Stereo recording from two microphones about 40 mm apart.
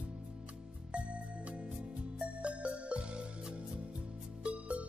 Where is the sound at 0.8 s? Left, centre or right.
Right.